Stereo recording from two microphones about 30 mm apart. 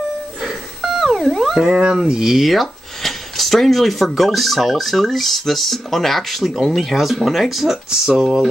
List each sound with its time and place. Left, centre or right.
0.4 s music: centre
2.0 s speech: centre
2.3 s a sound: centre
4.2 s speech: centre
7.9 s speech: right
8.2 s speech: centre